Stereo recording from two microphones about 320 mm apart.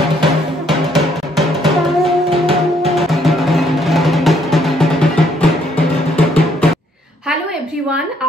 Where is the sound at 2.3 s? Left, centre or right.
Centre.